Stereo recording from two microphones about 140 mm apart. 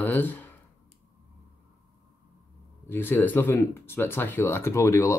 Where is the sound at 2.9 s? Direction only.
15° left (ahead or behind).